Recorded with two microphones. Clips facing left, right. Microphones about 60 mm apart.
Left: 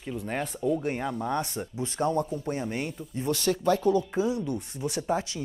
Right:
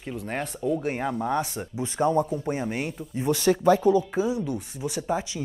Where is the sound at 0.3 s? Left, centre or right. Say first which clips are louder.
Right 1 dB; centre.